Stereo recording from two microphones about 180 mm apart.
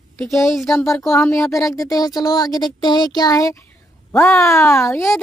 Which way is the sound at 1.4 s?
20° left (ahead or behind).